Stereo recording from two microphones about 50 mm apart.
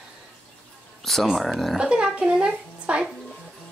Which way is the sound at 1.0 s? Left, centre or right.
Centre.